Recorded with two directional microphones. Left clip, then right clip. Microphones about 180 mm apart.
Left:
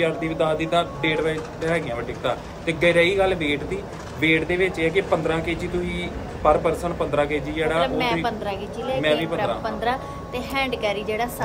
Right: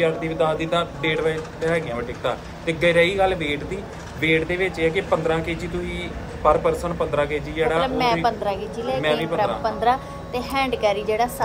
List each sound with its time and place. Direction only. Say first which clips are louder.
0.0 s speech: right 1 dB; 15° left (ahead or behind)
7.8 s a woman's voice: right 2 dB; centre (ahead or behind)
9.6 s a woman's voice: right 4 dB; centre (ahead or behind)